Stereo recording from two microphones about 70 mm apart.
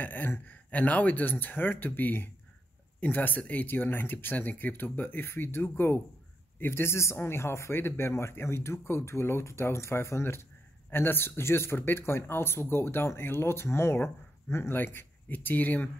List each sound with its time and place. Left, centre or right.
0.0 s speech: left